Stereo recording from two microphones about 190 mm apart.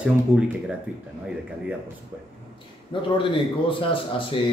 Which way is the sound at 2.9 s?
25° left (ahead or behind).